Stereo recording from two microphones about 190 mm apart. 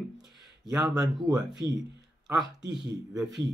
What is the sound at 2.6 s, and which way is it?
Speech, 65° right (ahead or behind).